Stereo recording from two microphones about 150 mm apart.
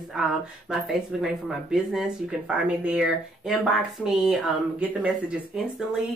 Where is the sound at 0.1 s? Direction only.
5° right (ahead or behind).